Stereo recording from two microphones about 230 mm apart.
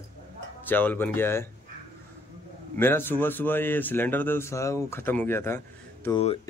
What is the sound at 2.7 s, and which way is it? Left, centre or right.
Speech, centre.